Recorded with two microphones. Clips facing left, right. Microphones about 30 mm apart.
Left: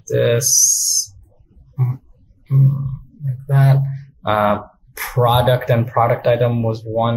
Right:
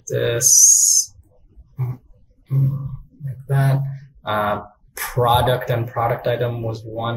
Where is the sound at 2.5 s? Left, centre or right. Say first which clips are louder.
Left 5 dB; left.